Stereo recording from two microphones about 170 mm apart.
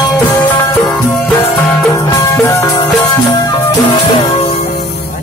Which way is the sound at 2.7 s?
25° left (ahead or behind).